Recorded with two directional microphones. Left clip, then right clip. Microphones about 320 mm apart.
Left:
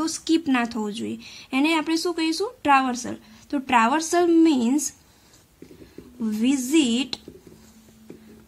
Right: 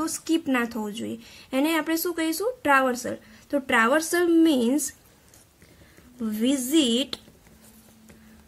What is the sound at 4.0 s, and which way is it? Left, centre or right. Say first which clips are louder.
Speech: left 3 dB; left.